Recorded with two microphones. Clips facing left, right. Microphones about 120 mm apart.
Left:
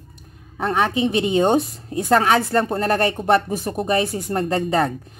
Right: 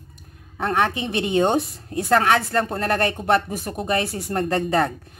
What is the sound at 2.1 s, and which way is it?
Speech, 5° left (ahead or behind).